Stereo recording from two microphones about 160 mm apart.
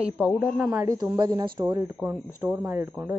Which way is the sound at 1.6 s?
15° right (ahead or behind).